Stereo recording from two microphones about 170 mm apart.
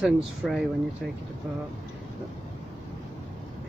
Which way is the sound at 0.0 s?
5° right (ahead or behind).